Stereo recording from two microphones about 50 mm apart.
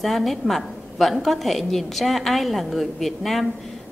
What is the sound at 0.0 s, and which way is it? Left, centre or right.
A woman's voice, centre.